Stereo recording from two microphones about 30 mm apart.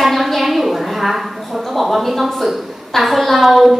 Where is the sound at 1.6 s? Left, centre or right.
Centre.